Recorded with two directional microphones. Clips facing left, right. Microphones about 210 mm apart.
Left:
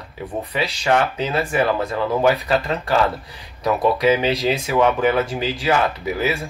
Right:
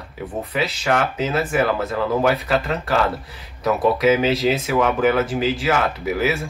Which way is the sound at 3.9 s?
Centre (ahead or behind).